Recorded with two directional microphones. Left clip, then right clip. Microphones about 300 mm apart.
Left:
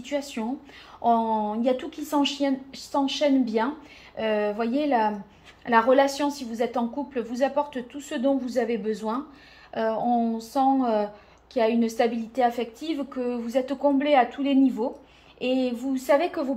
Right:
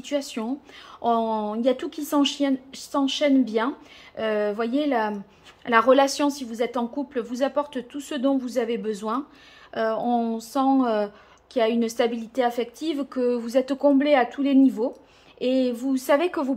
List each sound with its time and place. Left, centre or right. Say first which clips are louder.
0.0 s a woman's voice: right 2 dB; centre